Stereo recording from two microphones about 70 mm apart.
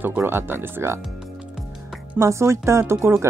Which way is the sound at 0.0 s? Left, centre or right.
Right.